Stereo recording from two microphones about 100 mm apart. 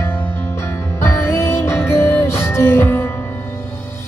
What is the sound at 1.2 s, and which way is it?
Music, 25° left (ahead or behind).